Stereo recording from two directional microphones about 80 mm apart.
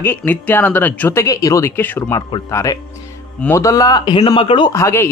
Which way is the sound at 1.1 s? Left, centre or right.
Left.